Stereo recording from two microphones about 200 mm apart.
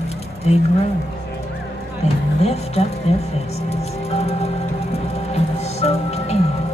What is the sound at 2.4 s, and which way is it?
Speech, 30° left (ahead or behind).